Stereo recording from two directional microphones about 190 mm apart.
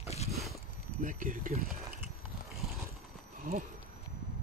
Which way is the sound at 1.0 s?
45° right (ahead or behind).